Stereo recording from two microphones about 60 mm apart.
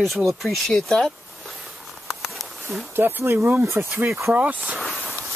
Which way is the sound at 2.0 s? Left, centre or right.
Centre.